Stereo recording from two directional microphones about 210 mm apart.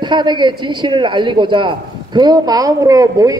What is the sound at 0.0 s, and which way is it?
A man's voice, 20° right (ahead or behind).